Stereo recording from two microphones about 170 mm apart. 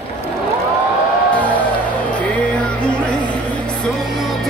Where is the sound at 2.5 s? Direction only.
5° left (ahead or behind).